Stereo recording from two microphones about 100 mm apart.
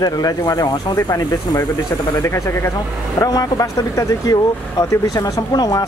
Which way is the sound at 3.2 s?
40° left (ahead or behind).